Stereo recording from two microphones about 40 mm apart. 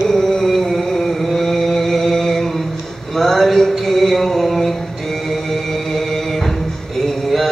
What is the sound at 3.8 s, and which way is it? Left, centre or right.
Mantra, centre.